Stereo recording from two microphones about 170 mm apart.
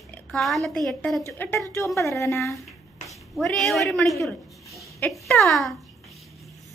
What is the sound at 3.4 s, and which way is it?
Speech, centre (ahead or behind).